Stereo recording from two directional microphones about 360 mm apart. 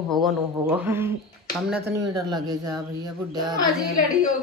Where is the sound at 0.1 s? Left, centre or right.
Centre.